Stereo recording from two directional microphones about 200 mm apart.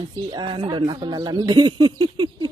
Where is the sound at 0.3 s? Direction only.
25° right (ahead or behind).